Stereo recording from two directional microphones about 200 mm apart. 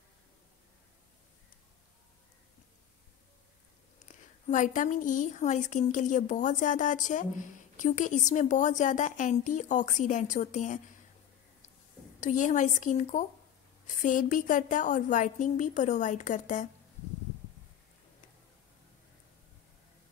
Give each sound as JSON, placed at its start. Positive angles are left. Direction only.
{"t": 4.5, "sound": "a woman's voice", "side_deg": 40}
{"t": 12.2, "sound": "a woman's voice", "side_deg": 40}